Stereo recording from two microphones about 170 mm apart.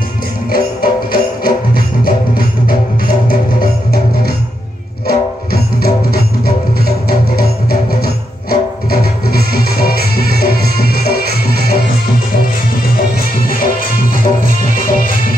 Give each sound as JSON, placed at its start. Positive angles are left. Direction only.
{"t": 0.5, "sound": "music", "side_deg": 60}
{"t": 7.9, "sound": "music", "side_deg": 65}
{"t": 13.5, "sound": "music", "side_deg": 60}